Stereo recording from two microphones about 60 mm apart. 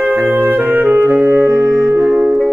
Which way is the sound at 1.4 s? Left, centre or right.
Right.